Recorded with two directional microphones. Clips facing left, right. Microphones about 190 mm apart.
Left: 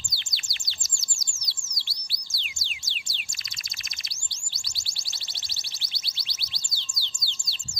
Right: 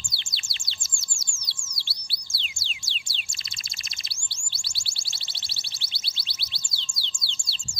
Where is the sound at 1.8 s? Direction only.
30° right (ahead or behind).